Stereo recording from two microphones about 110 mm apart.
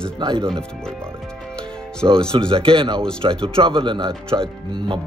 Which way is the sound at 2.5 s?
55° right (ahead or behind).